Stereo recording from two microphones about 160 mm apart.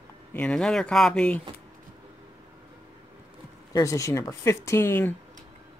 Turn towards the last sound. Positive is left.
turn(degrees=15)  # may be behind; listen again after turning